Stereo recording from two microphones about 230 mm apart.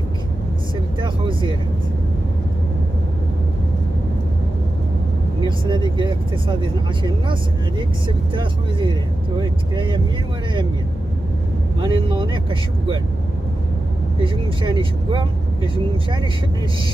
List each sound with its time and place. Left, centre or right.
1.0 s vehicle: right
5.4 s speech: centre
8.4 s speech: right
11.8 s speech: centre
14.2 s speech: right